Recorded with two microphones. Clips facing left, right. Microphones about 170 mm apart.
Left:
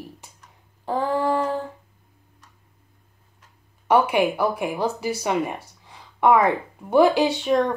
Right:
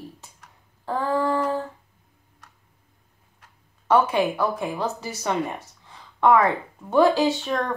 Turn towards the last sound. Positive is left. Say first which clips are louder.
# left 3 dB
turn(degrees=20)  # may be behind; listen again after turning